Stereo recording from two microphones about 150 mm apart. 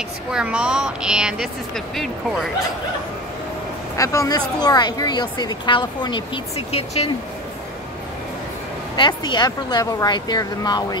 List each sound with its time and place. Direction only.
0.3 s speech: 5° right (ahead or behind)
3.9 s speech: 20° left (ahead or behind); by 7.1 s 45° left (ahead or behind)
8.9 s speech: 30° left (ahead or behind)